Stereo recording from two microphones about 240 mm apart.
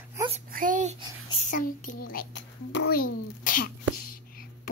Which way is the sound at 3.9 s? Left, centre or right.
Left.